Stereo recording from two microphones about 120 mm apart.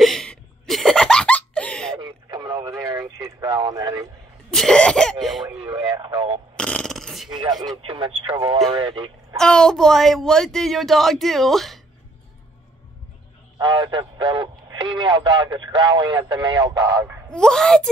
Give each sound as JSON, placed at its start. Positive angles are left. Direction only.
{"t": 0.0, "sound": "laughter", "side_deg": 5}
{"t": 2.0, "sound": "radio", "side_deg": -35}
{"t": 2.9, "sound": "a sound", "side_deg": -35}
{"t": 4.5, "sound": "cough", "side_deg": 5}
{"t": 5.2, "sound": "a sound", "side_deg": 0}
{"t": 5.9, "sound": "radio", "side_deg": -40}
{"t": 6.5, "sound": "fart", "side_deg": 5}
{"t": 7.8, "sound": "a man's voice", "side_deg": -45}
{"t": 9.4, "sound": "speech", "side_deg": 5}
{"t": 13.6, "sound": "a man's voice", "side_deg": -35}
{"t": 17.3, "sound": "speech", "side_deg": 5}